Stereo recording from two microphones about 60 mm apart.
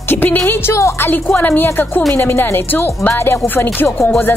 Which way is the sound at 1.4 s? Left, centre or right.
Left.